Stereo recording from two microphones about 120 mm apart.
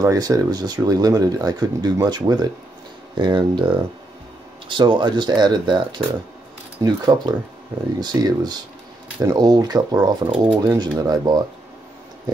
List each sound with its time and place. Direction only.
0.0 s speech: 30° right (ahead or behind)